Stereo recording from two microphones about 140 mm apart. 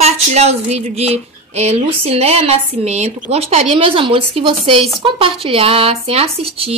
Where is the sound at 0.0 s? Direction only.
50° right (ahead or behind).